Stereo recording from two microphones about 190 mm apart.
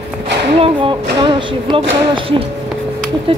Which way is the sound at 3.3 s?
30° right (ahead or behind).